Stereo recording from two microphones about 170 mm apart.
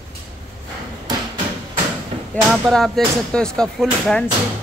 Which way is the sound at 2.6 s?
Centre (ahead or behind).